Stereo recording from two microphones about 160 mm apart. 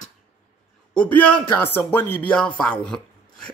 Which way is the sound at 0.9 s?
10° left (ahead or behind).